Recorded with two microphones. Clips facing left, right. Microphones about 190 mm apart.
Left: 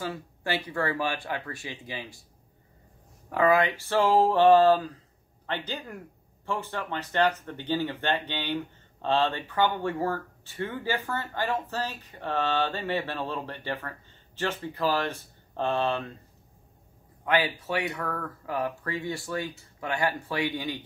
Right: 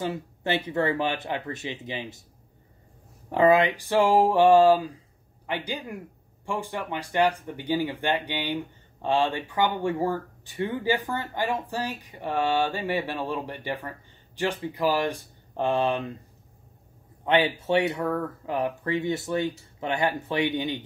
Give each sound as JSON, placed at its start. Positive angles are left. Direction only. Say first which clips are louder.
{"t": 0.0, "sound": "speech", "louder": "right 4 dB", "side_deg": -20}
{"t": 3.3, "sound": "speech", "louder": "right 3 dB", "side_deg": -25}
{"t": 17.2, "sound": "speech", "louder": "right 3 dB", "side_deg": -25}